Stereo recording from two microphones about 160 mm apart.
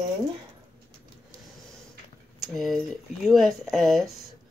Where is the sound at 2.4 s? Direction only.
Centre (ahead or behind).